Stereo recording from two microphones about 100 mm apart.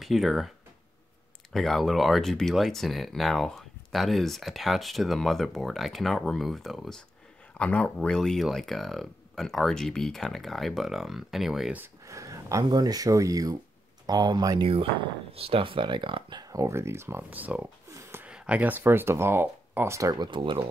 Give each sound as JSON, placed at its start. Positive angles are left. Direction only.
{"t": 0.0, "sound": "speech", "side_deg": 0}
{"t": 1.5, "sound": "speech", "side_deg": 0}
{"t": 12.1, "sound": "a sound", "side_deg": -35}
{"t": 12.6, "sound": "speech", "side_deg": -40}
{"t": 14.6, "sound": "speech", "side_deg": -55}
{"t": 16.3, "sound": "speech", "side_deg": -35}
{"t": 17.8, "sound": "a sound", "side_deg": -30}
{"t": 18.2, "sound": "speech", "side_deg": -15}
{"t": 20.2, "sound": "speech", "side_deg": -55}